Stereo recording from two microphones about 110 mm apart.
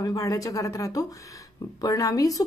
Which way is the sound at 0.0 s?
35° left (ahead or behind).